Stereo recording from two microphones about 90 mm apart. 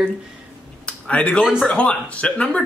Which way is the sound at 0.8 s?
15° left (ahead or behind).